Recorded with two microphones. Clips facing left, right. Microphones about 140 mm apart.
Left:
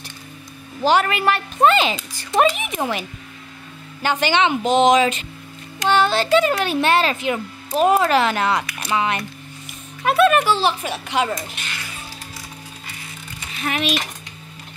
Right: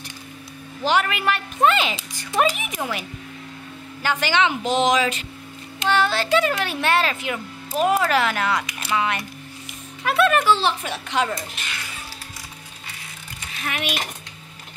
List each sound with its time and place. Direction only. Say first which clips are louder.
0.8 s a woman's voice: left 4 dB; 35° left (ahead or behind); by 11.4 s 5° left (ahead or behind)
13.7 s a woman's voice: left 5 dB; 30° left (ahead or behind)